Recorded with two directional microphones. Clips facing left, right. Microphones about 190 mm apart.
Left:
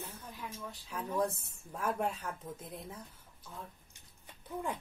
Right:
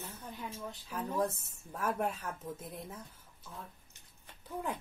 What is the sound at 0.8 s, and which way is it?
Speech, 5° right (ahead or behind).